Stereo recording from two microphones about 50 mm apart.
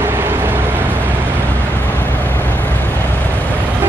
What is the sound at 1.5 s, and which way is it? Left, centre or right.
Vehicle, left.